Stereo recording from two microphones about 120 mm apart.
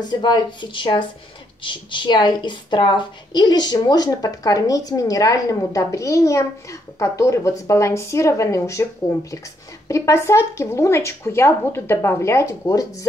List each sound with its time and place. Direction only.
0.0 s a woman's voice: 35° left (ahead or behind)